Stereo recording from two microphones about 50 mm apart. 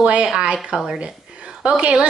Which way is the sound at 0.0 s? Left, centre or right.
Right.